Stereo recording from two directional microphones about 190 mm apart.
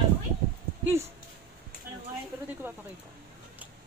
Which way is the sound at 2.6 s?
10° right (ahead or behind).